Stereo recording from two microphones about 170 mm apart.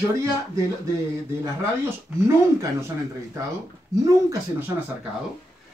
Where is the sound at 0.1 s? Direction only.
20° right (ahead or behind).